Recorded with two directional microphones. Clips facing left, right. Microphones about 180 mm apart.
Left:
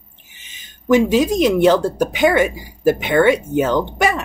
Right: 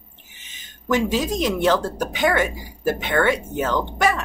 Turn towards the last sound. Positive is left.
turn(degrees=15)  # may be behind; listen again after turning